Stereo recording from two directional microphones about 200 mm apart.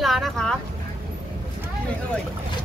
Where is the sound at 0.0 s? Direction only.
Centre (ahead or behind).